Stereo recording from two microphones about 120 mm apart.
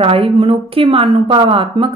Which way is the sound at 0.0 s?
50° right (ahead or behind).